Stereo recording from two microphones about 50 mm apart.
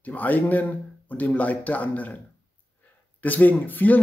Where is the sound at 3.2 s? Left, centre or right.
Left.